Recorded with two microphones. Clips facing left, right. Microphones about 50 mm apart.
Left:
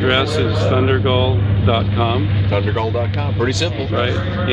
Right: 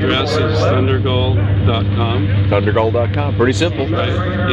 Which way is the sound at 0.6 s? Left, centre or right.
Centre.